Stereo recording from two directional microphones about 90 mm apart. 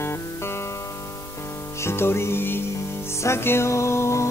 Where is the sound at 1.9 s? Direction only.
30° left (ahead or behind).